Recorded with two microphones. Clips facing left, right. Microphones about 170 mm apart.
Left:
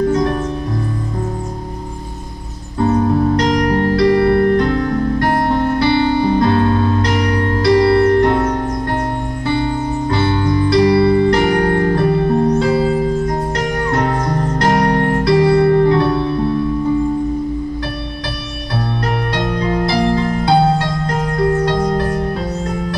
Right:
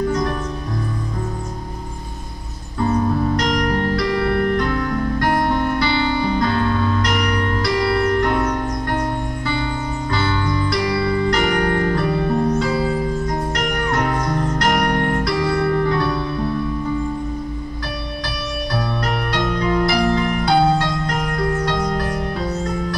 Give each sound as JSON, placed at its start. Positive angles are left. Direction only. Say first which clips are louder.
{"t": 2.9, "sound": "keyboard", "louder": "left 5 dB", "side_deg": 55}
{"t": 3.4, "sound": "music", "louder": "left 5 dB", "side_deg": 35}
{"t": 10.0, "sound": "music", "louder": "left 5 dB", "side_deg": 30}
{"t": 11.0, "sound": "music", "louder": "left 8 dB", "side_deg": 60}
{"t": 11.2, "sound": "music", "louder": "left 5 dB", "side_deg": 30}
{"t": 19.3, "sound": "music", "louder": "right 1 dB", "side_deg": 30}